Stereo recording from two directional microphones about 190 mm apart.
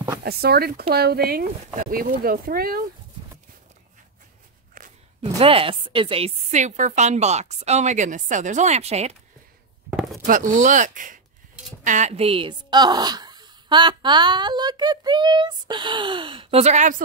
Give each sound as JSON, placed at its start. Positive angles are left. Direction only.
{"t": 0.2, "sound": "speech", "side_deg": -55}
{"t": 4.8, "sound": "a sound", "side_deg": -45}
{"t": 5.2, "sound": "speech", "side_deg": -30}
{"t": 9.8, "sound": "chopping", "side_deg": 0}
{"t": 10.2, "sound": "speech", "side_deg": -45}